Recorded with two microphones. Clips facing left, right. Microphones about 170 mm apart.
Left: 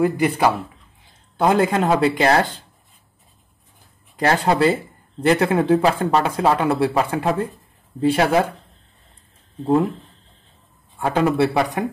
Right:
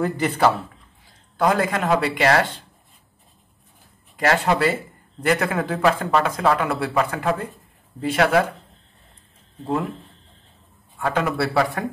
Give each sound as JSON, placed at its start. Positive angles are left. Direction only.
{"t": 0.0, "sound": "speech", "side_deg": 10}
{"t": 1.4, "sound": "speech", "side_deg": 25}
{"t": 4.2, "sound": "speech", "side_deg": 30}
{"t": 11.1, "sound": "a man's voice", "side_deg": 25}